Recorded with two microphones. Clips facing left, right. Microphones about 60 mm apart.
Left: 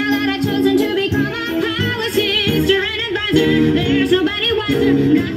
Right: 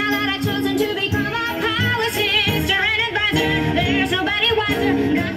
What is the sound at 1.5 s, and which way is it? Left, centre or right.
Music, right.